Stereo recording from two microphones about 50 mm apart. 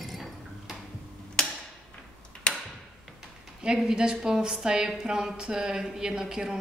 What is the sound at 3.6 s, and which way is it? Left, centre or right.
A woman's voice, centre.